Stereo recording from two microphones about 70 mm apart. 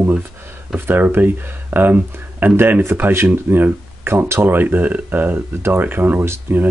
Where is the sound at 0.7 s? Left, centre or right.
Right.